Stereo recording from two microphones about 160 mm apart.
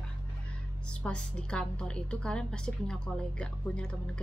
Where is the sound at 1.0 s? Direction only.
5° left (ahead or behind).